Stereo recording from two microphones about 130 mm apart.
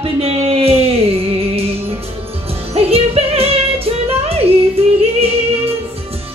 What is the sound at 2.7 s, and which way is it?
Music, 50° right (ahead or behind).